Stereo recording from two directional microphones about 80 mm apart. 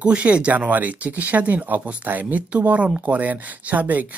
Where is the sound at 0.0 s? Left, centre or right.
Centre.